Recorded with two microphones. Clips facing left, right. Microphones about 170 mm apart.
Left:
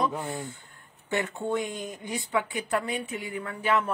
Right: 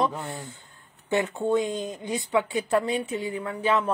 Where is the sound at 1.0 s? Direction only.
20° right (ahead or behind).